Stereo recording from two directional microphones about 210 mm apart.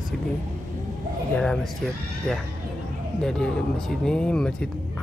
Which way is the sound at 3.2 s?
5° left (ahead or behind).